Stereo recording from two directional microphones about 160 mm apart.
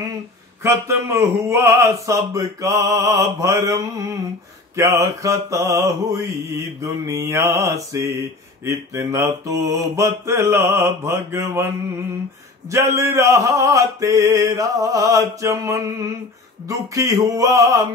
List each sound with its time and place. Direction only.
0.6 s mantra: 15° right (ahead or behind)